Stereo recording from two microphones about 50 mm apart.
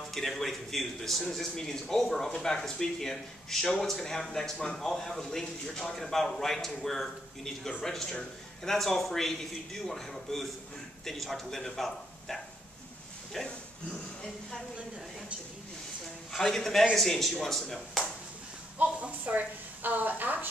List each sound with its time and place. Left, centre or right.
0.1 s a man's voice: centre
13.9 s a sound: centre
16.3 s a man's voice: centre
18.8 s a woman's voice: right